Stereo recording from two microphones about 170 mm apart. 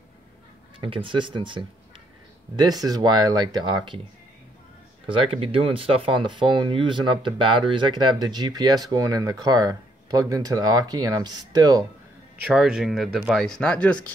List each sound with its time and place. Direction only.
0.7 s speech: 30° right (ahead or behind)
5.0 s speech: 30° right (ahead or behind)
12.4 s speech: 5° right (ahead or behind)